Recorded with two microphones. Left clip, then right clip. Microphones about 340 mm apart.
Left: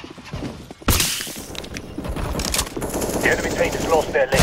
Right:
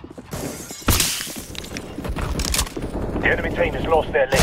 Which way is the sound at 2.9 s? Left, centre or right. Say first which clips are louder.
Left 4 dB; left.